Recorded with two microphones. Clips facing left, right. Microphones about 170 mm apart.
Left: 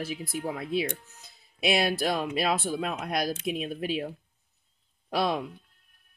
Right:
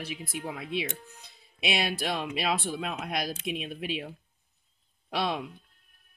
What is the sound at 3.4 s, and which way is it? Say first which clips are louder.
Speech: left 3 dB; 40° left (ahead or behind).